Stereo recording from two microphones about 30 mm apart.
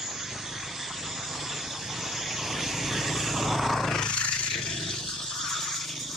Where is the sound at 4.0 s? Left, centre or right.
Left.